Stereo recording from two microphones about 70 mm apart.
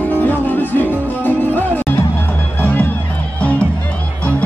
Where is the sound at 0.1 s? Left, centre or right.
Left.